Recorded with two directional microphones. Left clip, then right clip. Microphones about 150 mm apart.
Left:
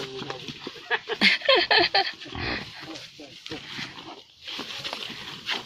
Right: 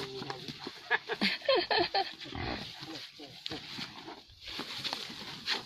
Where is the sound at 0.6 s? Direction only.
10° right (ahead or behind).